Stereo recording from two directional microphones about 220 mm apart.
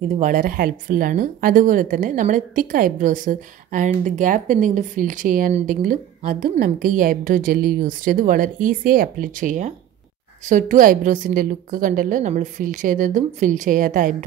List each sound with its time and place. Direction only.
0.1 s a woman's voice: 35° right (ahead or behind)